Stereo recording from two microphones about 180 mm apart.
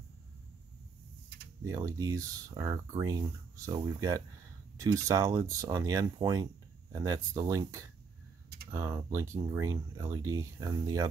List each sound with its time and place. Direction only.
1.6 s speech: 20° right (ahead or behind)